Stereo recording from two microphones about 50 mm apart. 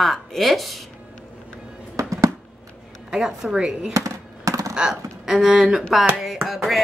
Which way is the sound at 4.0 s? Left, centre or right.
Right.